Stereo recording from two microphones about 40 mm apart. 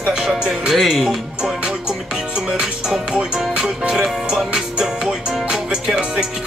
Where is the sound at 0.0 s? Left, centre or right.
Right.